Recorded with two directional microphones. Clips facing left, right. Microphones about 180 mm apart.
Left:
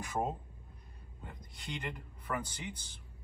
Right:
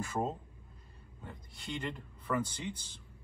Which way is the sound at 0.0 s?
15° left (ahead or behind).